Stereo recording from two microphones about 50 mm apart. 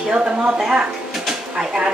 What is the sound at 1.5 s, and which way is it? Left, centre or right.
Speech, centre.